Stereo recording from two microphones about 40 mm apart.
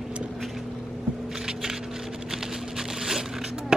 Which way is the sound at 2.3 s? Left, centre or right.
Centre.